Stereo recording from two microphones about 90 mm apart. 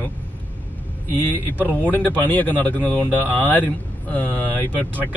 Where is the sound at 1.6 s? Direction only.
20° right (ahead or behind).